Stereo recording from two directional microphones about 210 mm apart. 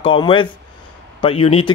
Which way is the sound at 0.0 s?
25° left (ahead or behind).